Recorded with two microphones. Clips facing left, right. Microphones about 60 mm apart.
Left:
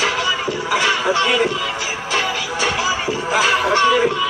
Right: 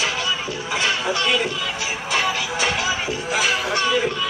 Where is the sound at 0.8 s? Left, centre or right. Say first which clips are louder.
Left 3 dB; left.